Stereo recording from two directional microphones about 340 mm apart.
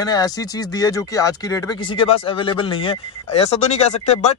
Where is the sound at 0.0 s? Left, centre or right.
Centre.